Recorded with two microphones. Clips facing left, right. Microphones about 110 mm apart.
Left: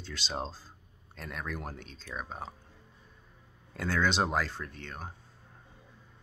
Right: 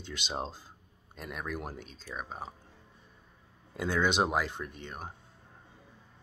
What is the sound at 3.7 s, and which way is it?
Speech, 15° right (ahead or behind).